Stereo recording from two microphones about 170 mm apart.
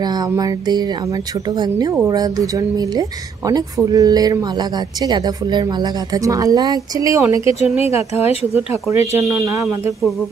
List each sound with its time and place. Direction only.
0.0 s speech: 25° right (ahead or behind)
7.6 s speech: 40° left (ahead or behind)
9.1 s speech: 15° right (ahead or behind)